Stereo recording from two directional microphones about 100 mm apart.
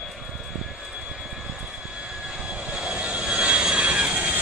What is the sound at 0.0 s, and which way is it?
Vehicle, 5° right (ahead or behind).